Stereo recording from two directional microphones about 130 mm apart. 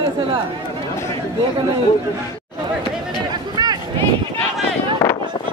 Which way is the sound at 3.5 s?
30° right (ahead or behind).